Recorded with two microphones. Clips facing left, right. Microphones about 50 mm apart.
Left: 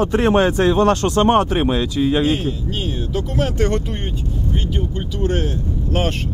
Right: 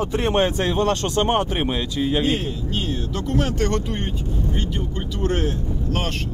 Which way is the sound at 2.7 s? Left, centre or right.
Centre.